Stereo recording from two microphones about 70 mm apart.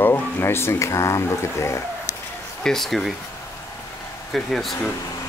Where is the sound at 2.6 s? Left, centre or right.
Centre.